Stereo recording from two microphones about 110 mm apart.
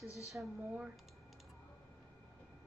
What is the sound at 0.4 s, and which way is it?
Speech, 10° right (ahead or behind).